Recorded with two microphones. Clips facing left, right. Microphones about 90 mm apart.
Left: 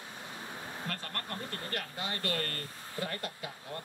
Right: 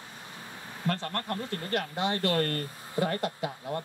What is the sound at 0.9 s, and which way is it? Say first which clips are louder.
Speech: right 11 dB; 30° right (ahead or behind).